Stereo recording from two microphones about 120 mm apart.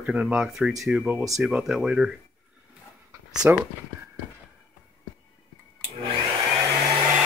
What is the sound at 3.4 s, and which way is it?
Speech, 15° right (ahead or behind).